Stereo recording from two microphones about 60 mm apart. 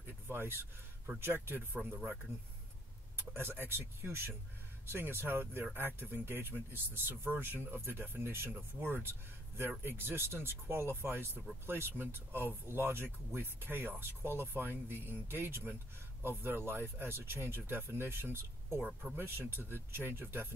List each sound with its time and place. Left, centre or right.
0.0 s speech: right
3.2 s speech: right
18.8 s speech: centre
19.1 s speech: right